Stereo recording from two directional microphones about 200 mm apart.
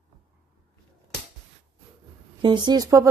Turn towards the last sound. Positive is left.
turn(degrees=-15)  # may be behind; listen again after turning